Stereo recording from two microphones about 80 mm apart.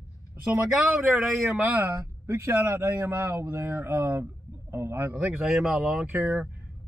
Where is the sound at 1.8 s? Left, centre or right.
Right.